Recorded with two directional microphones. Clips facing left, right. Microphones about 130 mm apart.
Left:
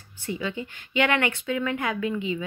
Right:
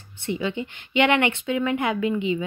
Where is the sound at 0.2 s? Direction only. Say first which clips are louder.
Right 4 dB; 25° right (ahead or behind).